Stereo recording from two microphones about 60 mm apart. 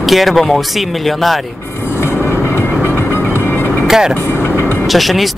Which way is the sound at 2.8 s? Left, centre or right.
Left.